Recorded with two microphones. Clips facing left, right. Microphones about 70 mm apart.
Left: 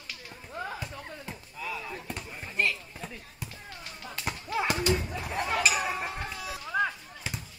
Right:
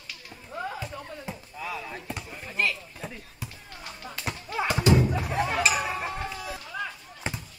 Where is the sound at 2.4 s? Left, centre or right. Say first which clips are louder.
Right 1 dB; centre.